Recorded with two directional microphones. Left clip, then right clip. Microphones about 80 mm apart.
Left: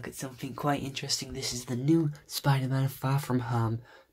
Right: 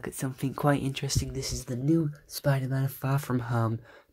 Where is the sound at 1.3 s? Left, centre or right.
Right.